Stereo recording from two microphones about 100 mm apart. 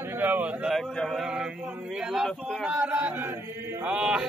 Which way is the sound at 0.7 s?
Centre (ahead or behind).